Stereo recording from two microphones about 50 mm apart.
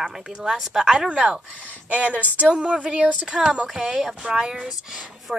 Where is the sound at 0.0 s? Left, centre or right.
Centre.